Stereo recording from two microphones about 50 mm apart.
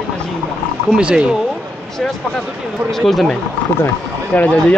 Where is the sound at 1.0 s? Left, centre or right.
Right.